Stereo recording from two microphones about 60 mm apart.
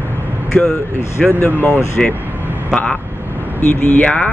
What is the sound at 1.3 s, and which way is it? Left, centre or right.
Speech, left.